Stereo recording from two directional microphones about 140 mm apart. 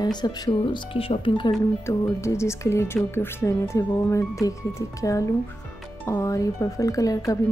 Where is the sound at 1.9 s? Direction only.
20° left (ahead or behind).